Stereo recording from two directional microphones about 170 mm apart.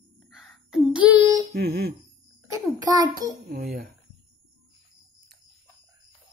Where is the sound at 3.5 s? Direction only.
60° right (ahead or behind).